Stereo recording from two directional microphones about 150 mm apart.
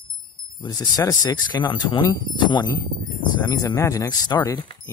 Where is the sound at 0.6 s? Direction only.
25° left (ahead or behind).